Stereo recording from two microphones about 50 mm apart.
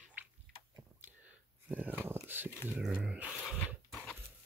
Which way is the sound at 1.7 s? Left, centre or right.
Right.